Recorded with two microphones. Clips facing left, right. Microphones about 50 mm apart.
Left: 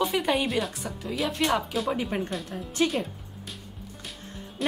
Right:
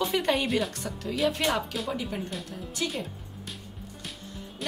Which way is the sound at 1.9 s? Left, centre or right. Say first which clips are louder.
Left 4 dB; left.